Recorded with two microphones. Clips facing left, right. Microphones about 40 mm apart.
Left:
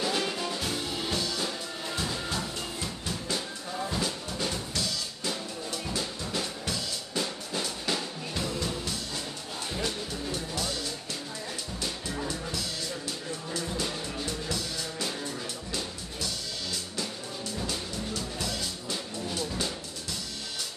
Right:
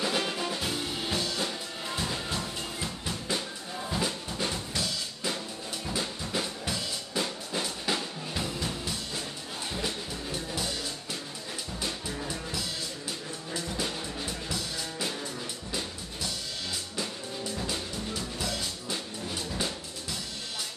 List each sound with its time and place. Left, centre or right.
0.0 s music: centre
1.2 s music: right
2.0 s music: centre
5.9 s drum: centre
9.8 s music: centre
11.8 s music: centre
13.8 s music: centre
17.6 s music: centre